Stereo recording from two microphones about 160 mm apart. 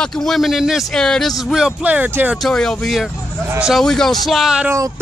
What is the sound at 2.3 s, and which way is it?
Speech, 5° left (ahead or behind).